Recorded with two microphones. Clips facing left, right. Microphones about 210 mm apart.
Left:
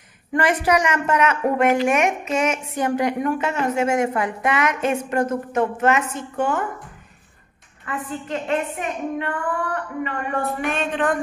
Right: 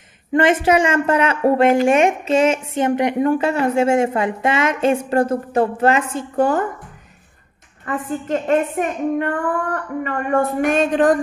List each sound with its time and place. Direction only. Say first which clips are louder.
0.3 s a woman's voice: right 4 dB; 25° right (ahead or behind)
7.8 s a woman's voice: right 5 dB; 45° right (ahead or behind)